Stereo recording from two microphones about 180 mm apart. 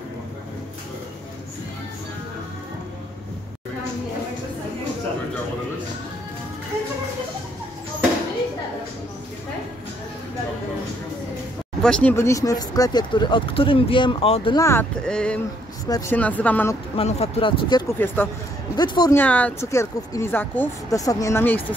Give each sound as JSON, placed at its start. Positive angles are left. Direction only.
{"t": 11.8, "sound": "speech", "side_deg": 5}
{"t": 14.6, "sound": "speech", "side_deg": 10}
{"t": 16.9, "sound": "speech", "side_deg": 30}
{"t": 17.9, "sound": "speech", "side_deg": 10}
{"t": 18.8, "sound": "speech", "side_deg": 20}
{"t": 19.1, "sound": "speech", "side_deg": 10}